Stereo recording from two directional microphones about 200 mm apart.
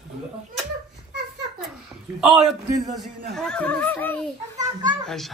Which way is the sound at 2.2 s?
Centre (ahead or behind).